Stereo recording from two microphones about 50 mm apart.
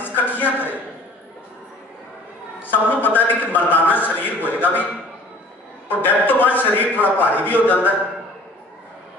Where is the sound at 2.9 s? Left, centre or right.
Left.